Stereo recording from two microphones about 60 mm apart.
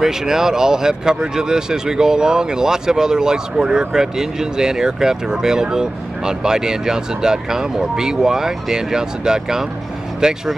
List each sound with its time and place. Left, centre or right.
0.0 s speech: centre